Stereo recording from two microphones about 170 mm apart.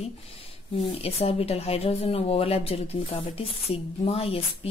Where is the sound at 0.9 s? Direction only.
35° left (ahead or behind).